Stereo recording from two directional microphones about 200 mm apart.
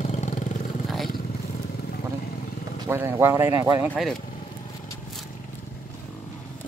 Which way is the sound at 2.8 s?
10° right (ahead or behind).